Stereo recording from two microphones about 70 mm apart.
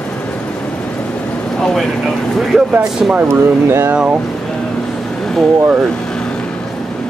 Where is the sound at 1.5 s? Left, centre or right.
Centre.